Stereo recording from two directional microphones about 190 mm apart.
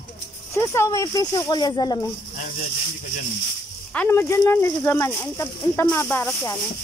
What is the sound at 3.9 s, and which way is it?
Speech, 10° left (ahead or behind).